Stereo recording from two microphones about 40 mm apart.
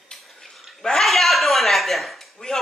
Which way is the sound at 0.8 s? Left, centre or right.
Centre.